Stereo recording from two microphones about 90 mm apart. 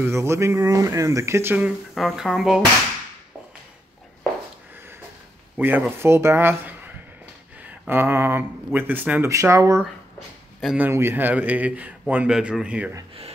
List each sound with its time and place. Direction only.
0.0 s speech: 30° right (ahead or behind)
2.0 s speech: centre (ahead or behind)
5.6 s speech: 20° right (ahead or behind)
9.3 s speech: 35° right (ahead or behind)
10.8 s a man's voice: 25° right (ahead or behind)